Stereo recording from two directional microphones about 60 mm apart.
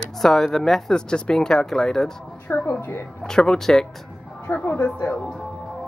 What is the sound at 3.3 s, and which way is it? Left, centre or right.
Speech, centre.